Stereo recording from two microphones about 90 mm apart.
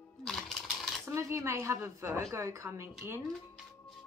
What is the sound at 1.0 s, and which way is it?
Speech, 35° right (ahead or behind).